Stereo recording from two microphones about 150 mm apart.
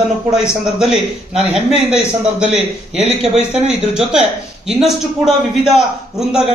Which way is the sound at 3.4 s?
5° right (ahead or behind).